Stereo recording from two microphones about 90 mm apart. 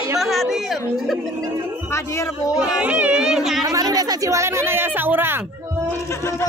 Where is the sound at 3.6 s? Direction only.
45° right (ahead or behind); by 5.3 s 20° right (ahead or behind).